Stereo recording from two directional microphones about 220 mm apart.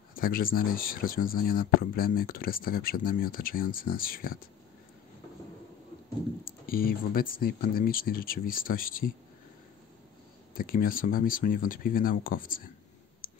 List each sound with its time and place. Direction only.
0.1 s speech: 40° left (ahead or behind)
6.4 s speech: 40° left (ahead or behind)
10.6 s speech: 40° left (ahead or behind)